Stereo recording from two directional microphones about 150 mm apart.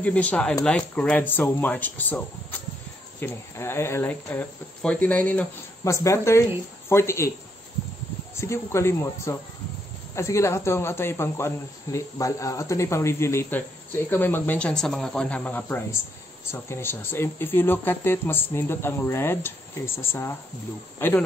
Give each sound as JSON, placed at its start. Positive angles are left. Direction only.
{"t": 0.0, "sound": "speech", "side_deg": 10}
{"t": 8.4, "sound": "speech", "side_deg": 20}